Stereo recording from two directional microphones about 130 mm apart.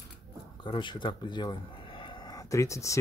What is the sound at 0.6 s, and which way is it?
Speech, 40° left (ahead or behind).